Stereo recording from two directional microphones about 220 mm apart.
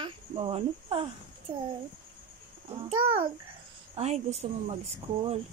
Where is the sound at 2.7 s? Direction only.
25° right (ahead or behind).